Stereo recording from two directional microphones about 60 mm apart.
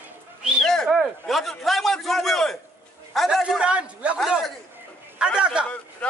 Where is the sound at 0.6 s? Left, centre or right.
Centre.